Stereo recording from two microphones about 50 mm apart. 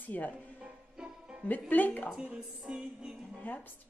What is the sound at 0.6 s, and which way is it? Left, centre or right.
Music, centre.